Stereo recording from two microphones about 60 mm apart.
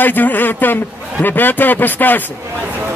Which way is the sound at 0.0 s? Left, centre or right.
Left.